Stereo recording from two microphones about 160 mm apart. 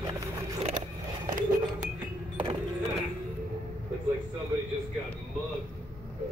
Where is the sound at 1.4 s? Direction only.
55° right (ahead or behind).